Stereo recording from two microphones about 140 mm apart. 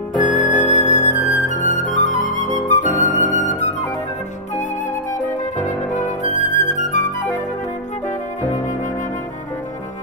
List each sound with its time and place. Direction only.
0.3 s music: 60° left (ahead or behind)
5.6 s music: 60° left (ahead or behind)